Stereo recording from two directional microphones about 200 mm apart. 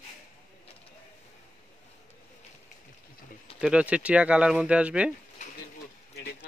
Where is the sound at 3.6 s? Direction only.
5° right (ahead or behind).